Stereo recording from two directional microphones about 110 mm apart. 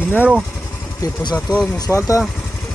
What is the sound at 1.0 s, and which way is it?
Speech, 40° left (ahead or behind).